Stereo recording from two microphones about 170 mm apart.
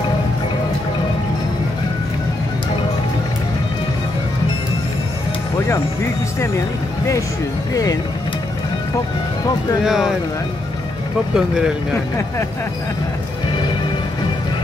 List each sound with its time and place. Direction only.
7.7 s speech: 20° left (ahead or behind)
9.8 s speech: 5° right (ahead or behind)
11.3 s speech: 5° right (ahead or behind)